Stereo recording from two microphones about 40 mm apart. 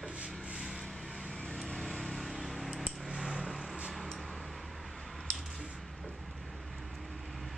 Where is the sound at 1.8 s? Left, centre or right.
Centre.